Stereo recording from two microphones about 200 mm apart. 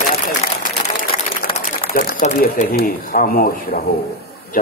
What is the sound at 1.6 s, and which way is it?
Speech, 45° left (ahead or behind).